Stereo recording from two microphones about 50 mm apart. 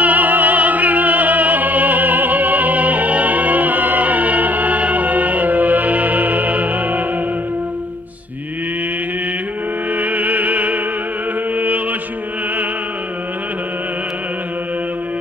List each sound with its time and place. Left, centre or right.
0.0 s opera: right
9.9 s music: right
11.5 s mantra: right